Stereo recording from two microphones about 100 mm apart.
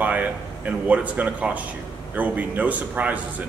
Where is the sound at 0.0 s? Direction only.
15° right (ahead or behind).